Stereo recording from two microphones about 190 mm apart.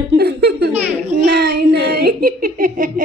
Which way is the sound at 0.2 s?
60° right (ahead or behind).